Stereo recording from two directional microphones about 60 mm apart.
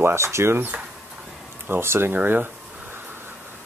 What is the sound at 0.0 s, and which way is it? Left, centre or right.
Speech, right.